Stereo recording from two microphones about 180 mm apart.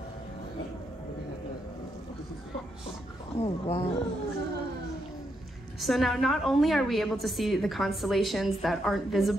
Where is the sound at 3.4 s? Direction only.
30° left (ahead or behind).